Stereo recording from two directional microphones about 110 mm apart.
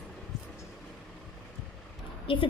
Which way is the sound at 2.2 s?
50° left (ahead or behind).